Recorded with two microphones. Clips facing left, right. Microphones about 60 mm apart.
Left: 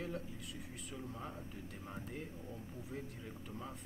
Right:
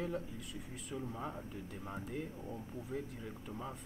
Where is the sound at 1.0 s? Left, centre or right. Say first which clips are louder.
Right 5 dB; centre.